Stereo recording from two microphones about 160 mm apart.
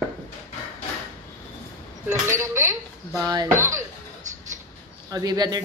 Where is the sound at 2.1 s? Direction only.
15° right (ahead or behind).